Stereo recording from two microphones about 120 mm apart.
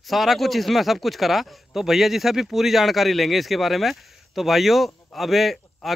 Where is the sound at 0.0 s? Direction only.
Centre (ahead or behind).